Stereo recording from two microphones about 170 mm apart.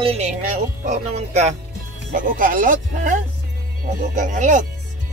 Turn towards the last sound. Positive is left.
turn(degrees=-45)  # may be behind; listen again after turning